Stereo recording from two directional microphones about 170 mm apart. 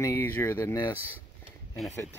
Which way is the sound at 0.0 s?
15° left (ahead or behind).